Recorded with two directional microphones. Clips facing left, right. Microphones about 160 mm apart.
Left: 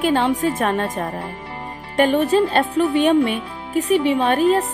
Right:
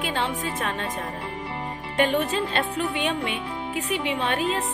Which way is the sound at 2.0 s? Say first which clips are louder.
Left 7 dB; 35° left (ahead or behind).